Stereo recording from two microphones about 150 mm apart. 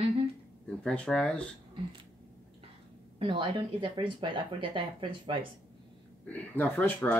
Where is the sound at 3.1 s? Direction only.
35° right (ahead or behind).